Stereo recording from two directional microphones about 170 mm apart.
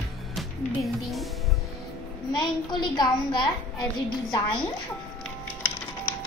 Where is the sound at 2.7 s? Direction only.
25° left (ahead or behind).